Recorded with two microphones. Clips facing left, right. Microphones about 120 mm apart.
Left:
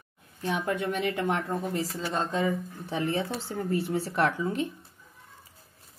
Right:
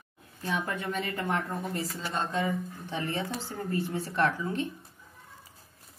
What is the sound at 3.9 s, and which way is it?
Speech, 80° left.